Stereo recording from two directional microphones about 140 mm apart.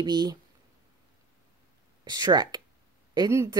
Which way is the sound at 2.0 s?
30° right (ahead or behind).